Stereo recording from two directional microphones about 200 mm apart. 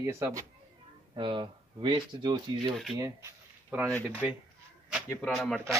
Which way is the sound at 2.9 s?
15° right (ahead or behind).